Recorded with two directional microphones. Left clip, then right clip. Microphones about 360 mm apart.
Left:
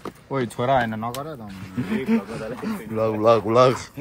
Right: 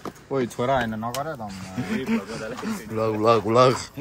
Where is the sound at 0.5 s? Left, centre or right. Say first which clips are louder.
Left 4 dB; left.